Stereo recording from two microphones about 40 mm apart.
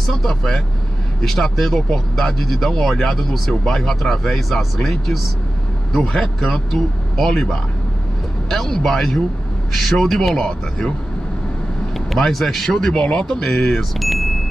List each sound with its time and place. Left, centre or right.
0.1 s speech: centre
5.9 s speech: centre
6.4 s speech: centre
8.5 s speech: centre
10.3 s speech: centre
12.1 s speech: centre
12.9 s speech: left
13.9 s a sound: centre